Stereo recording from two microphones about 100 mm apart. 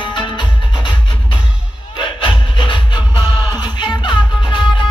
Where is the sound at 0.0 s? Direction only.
50° left (ahead or behind).